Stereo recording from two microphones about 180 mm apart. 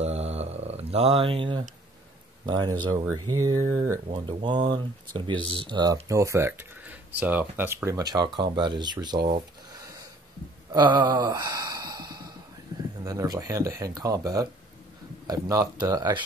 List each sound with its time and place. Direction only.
0.0 s mantra: 35° right (ahead or behind)
2.4 s speech: 25° right (ahead or behind)
10.7 s gasp: 25° right (ahead or behind)
13.0 s speech: 20° right (ahead or behind)